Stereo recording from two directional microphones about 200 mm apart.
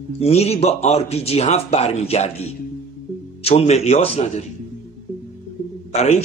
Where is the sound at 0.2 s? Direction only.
30° left (ahead or behind).